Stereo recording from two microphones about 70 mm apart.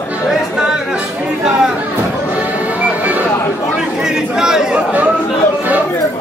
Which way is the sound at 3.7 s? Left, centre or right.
Centre.